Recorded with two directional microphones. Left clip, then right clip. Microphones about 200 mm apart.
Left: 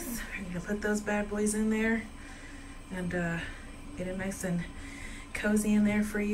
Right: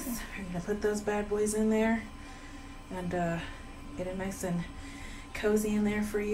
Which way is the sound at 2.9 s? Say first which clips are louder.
Right 1 dB; 5° right (ahead or behind).